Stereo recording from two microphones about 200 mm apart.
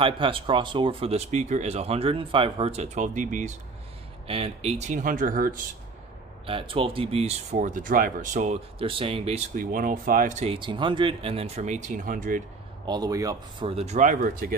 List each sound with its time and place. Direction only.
0.0 s speech: 25° right (ahead or behind); by 5.6 s 45° right (ahead or behind)
6.4 s speech: 25° right (ahead or behind)
12.8 s speech: 20° right (ahead or behind)
13.7 s speech: 30° right (ahead or behind)